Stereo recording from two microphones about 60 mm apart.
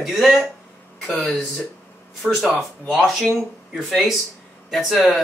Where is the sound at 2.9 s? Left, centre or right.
Centre.